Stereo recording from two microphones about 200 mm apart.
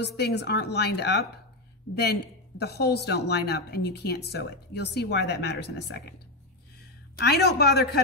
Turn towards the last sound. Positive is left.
turn(degrees=55)  # may be behind; listen again after turning